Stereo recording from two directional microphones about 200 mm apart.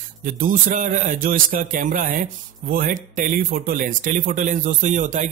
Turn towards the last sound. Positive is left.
turn(degrees=-40)  # may be behind; listen again after turning